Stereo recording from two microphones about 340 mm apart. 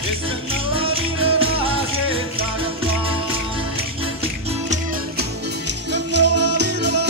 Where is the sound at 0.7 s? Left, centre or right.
Centre.